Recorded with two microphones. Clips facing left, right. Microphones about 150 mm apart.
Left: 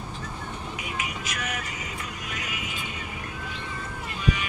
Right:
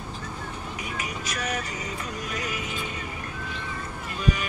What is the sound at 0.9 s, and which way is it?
Vehicle, 40° right (ahead or behind).